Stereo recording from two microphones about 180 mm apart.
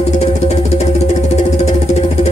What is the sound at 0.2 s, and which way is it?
Music, 40° left (ahead or behind).